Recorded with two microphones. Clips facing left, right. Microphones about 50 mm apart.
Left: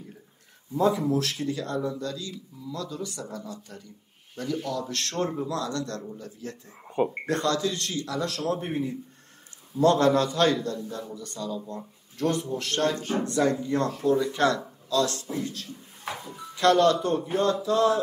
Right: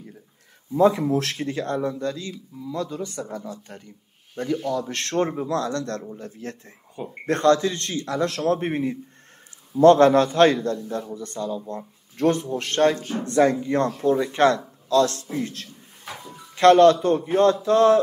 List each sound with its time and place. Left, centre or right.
1.0 s speech: right
1.3 s a man's voice: right
5.5 s a man's voice: right
8.5 s a man's voice: right
16.5 s a man's voice: right
17.6 s a man's voice: right